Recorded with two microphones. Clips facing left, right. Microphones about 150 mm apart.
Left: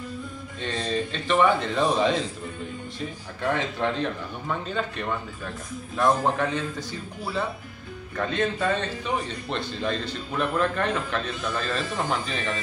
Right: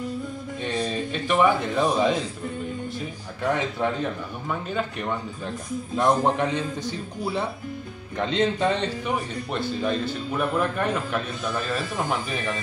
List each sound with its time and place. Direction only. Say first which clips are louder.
0.7 s a man's voice: even; 10° right (ahead or behind)
3.4 s a man's voice: right 1 dB; 10° right (ahead or behind)